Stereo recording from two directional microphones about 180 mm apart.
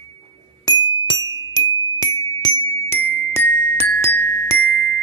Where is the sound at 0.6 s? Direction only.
25° left (ahead or behind).